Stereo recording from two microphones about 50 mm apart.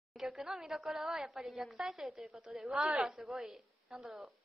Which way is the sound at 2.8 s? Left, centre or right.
Right.